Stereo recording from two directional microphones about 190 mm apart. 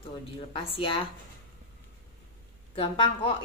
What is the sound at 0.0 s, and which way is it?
Speech, 30° left (ahead or behind).